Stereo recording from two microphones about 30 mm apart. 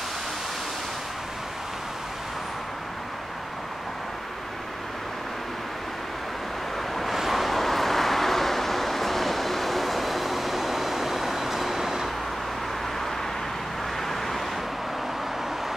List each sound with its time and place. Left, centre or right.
7.2 s vehicle: centre
14.0 s vehicle: centre